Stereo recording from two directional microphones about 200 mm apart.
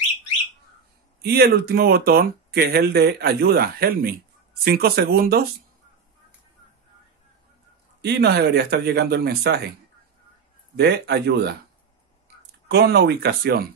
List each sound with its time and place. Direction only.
1.2 s speech: 50° right (ahead or behind)
8.0 s a man's voice: 55° right (ahead or behind)
10.8 s a man's voice: 55° right (ahead or behind)
12.6 s speech: 55° right (ahead or behind)